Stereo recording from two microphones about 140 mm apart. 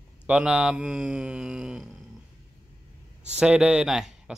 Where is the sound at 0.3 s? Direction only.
5° right (ahead or behind).